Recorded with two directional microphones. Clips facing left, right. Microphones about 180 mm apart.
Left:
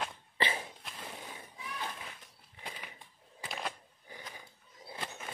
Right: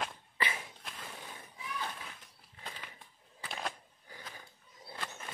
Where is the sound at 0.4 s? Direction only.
30° left (ahead or behind).